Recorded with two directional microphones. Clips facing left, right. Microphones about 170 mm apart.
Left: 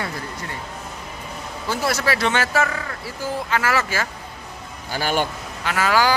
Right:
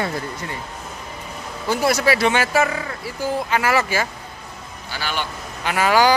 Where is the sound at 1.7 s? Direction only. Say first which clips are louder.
Right 4 dB; 15° right (ahead or behind).